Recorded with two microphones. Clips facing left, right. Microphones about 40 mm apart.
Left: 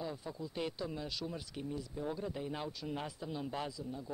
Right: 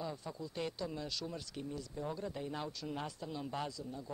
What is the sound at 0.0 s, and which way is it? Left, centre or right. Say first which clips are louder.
Speech: left 1 dB; centre.